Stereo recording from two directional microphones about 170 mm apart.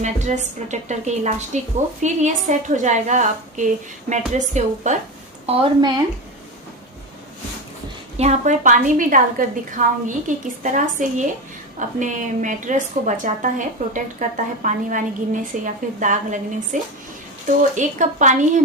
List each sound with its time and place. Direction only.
0.0 s a woman's voice: 45° right (ahead or behind)
5.5 s speech: 30° right (ahead or behind)
8.2 s a woman's voice: 45° right (ahead or behind)